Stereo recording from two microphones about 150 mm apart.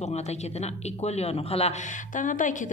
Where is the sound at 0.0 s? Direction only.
45° left (ahead or behind).